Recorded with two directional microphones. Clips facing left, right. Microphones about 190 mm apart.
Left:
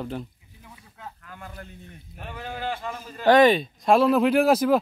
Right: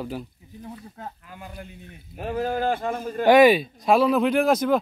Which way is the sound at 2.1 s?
40° right (ahead or behind).